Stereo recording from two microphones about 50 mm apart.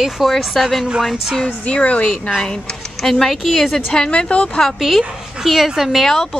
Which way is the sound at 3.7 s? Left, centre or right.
Centre.